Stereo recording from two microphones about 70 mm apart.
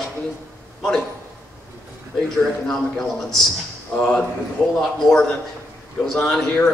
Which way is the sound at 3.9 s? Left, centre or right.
Centre.